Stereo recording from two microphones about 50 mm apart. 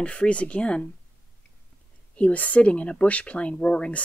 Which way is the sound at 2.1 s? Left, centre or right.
Left.